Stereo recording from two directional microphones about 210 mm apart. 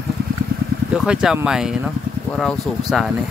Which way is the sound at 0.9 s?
5° right (ahead or behind).